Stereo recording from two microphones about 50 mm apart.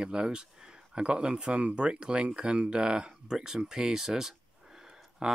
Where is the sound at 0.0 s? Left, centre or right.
Centre.